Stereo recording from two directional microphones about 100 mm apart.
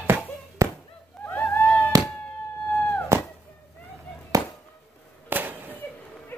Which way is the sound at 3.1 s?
30° right (ahead or behind).